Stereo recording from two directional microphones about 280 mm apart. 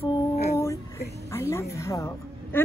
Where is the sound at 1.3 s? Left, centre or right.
Centre.